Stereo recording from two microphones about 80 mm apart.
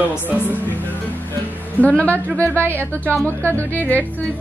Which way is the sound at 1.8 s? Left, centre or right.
Centre.